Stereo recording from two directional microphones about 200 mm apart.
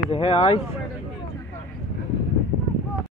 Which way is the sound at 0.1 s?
30° left (ahead or behind).